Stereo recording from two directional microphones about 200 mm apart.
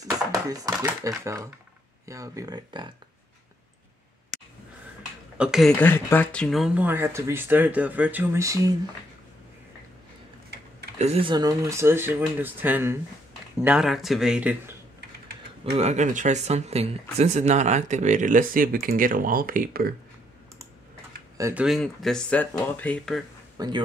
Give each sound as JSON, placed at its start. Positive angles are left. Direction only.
{"t": 0.0, "sound": "speech", "side_deg": -15}
{"t": 5.4, "sound": "speech", "side_deg": 0}
{"t": 5.8, "sound": "speech", "side_deg": 10}
{"t": 11.0, "sound": "speech", "side_deg": -30}
{"t": 15.6, "sound": "speech", "side_deg": -30}
{"t": 21.4, "sound": "speech", "side_deg": -15}
{"t": 21.6, "sound": "speech", "side_deg": 0}
{"t": 23.6, "sound": "a man's voice", "side_deg": -20}